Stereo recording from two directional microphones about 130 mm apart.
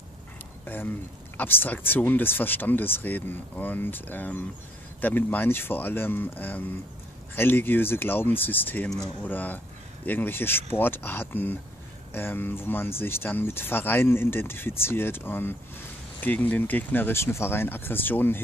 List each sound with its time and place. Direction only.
0.7 s speech: 15° left (ahead or behind)